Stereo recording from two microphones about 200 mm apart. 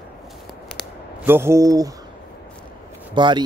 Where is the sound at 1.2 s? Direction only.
10° right (ahead or behind).